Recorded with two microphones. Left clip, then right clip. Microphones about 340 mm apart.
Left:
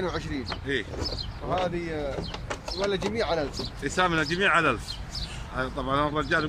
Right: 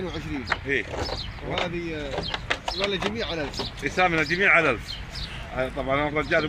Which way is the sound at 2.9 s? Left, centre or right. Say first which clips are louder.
Left 4 dB; left.